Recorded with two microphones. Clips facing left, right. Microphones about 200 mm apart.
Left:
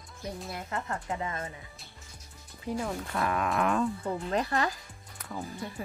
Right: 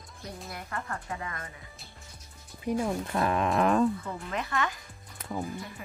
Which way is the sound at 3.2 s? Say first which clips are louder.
Right 3 dB; 30° right (ahead or behind).